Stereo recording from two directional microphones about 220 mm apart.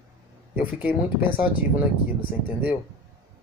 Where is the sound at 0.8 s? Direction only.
10° right (ahead or behind).